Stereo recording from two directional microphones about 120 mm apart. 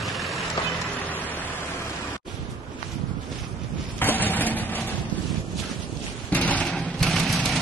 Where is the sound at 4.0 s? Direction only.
15° left (ahead or behind).